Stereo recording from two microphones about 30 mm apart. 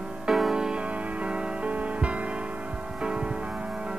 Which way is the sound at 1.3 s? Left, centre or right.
Right.